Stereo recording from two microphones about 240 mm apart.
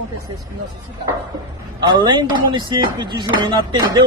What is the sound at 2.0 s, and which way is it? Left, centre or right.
Speech, centre.